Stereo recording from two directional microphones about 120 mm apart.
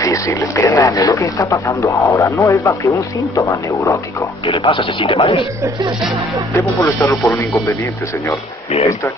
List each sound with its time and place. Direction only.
0.0 s speech: 25° left (ahead or behind)
4.5 s speech: 45° left (ahead or behind)
6.5 s speech: 25° left (ahead or behind)